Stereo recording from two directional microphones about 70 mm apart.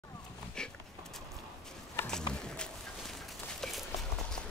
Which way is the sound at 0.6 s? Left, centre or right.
Centre.